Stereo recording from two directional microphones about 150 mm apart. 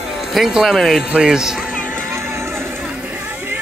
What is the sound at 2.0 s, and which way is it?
Music, 15° right (ahead or behind).